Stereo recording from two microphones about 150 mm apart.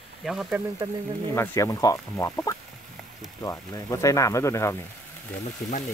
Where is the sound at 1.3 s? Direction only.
15° left (ahead or behind).